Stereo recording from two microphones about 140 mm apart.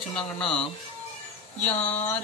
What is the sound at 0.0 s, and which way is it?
Speech, 5° left (ahead or behind).